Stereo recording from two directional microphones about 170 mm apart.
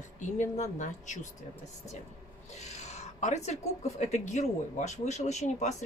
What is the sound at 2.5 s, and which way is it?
Speech, 40° left (ahead or behind).